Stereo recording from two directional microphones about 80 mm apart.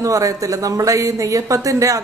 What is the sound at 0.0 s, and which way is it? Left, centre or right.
Speech, right.